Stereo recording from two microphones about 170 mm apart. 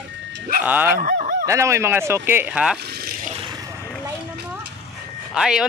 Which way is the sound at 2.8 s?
65° right (ahead or behind).